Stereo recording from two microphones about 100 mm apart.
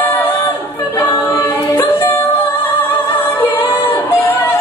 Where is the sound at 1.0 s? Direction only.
35° left (ahead or behind).